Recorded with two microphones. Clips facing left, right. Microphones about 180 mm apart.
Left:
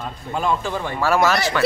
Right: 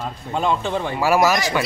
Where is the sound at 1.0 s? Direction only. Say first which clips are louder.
Right 1 dB; 10° right (ahead or behind).